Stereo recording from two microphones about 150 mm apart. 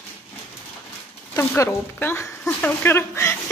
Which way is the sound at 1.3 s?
15° left (ahead or behind).